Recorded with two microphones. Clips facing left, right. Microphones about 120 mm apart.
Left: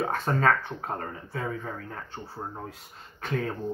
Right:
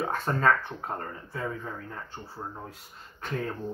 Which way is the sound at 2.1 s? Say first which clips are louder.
Left 2 dB; 25° left (ahead or behind).